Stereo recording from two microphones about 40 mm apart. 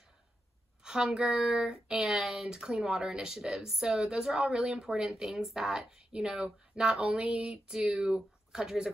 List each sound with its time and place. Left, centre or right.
0.8 s a woman's voice: centre
2.5 s a woman's voice: centre
7.0 s speech: right
7.4 s a woman's voice: centre